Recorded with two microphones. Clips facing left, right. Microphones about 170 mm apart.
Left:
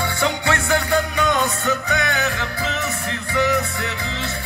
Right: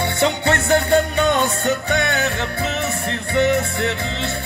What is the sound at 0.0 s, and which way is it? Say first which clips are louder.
Music: right 3 dB; 25° right (ahead or behind).